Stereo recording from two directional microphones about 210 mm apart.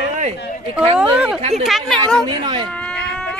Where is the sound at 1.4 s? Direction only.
30° right (ahead or behind).